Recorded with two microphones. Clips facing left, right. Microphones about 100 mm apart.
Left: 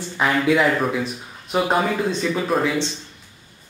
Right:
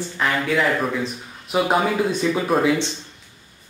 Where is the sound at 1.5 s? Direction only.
5° right (ahead or behind).